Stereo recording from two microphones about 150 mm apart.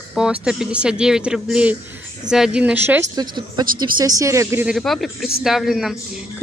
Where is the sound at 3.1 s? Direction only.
25° right (ahead or behind).